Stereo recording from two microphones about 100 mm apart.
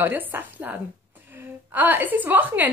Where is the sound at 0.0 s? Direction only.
20° right (ahead or behind).